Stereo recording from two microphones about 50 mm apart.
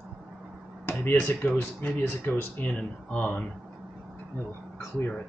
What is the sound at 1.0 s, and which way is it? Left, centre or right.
Speech, left.